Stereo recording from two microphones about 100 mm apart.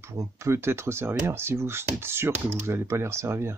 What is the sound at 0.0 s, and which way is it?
Speech, 30° right (ahead or behind).